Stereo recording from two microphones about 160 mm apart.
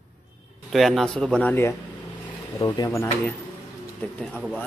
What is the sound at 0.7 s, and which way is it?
A man's voice, centre (ahead or behind).